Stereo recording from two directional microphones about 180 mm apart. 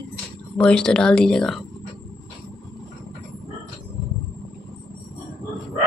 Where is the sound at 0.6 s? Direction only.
5° left (ahead or behind).